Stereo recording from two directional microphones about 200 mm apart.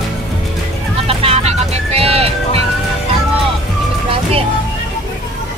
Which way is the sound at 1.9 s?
30° right (ahead or behind).